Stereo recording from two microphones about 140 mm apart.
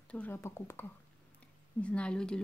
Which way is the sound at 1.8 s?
10° left (ahead or behind).